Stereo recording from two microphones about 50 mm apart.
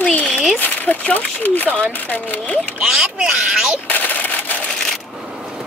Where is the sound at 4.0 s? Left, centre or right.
Left.